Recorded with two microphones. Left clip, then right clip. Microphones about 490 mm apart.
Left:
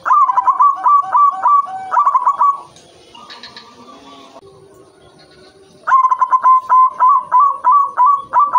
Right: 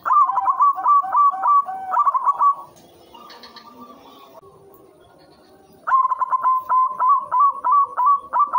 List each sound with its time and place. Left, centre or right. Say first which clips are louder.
0.0 s bird: left 5 dB; right
5.9 s dog: left 7 dB; right